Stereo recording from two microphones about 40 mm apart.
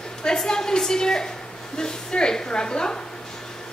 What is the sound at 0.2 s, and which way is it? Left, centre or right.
A woman's voice, centre.